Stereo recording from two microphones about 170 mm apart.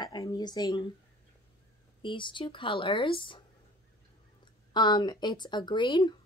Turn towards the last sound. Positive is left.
turn(degrees=25)  # may be behind; listen again after turning